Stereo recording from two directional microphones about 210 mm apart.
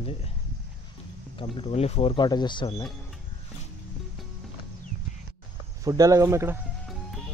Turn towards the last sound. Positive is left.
turn(degrees=-10)  # may be behind; listen again after turning